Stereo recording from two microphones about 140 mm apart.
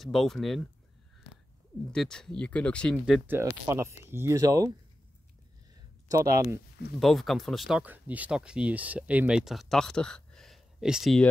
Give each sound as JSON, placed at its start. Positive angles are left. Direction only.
{"t": 0.0, "sound": "speech", "side_deg": 0}
{"t": 1.9, "sound": "speech", "side_deg": 5}
{"t": 3.3, "sound": "speech", "side_deg": -15}
{"t": 5.8, "sound": "a sound", "side_deg": -20}
{"t": 7.0, "sound": "speech", "side_deg": 0}